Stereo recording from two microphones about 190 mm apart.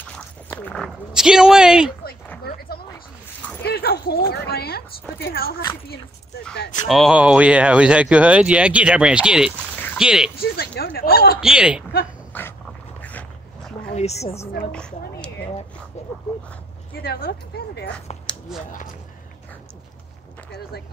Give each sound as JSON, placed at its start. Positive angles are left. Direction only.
{"t": 0.5, "sound": "speech", "side_deg": 5}
{"t": 3.6, "sound": "speech", "side_deg": 55}
{"t": 6.9, "sound": "speech", "side_deg": 0}
{"t": 10.3, "sound": "speech", "side_deg": 55}
{"t": 11.4, "sound": "speech", "side_deg": -5}
{"t": 12.3, "sound": "dog", "side_deg": 10}
{"t": 13.9, "sound": "speech", "side_deg": 35}
{"t": 14.7, "sound": "a woman's voice", "side_deg": 5}
{"t": 16.9, "sound": "speech", "side_deg": 55}